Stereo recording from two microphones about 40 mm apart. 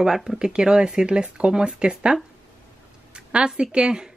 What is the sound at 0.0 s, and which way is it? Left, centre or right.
Speech, centre.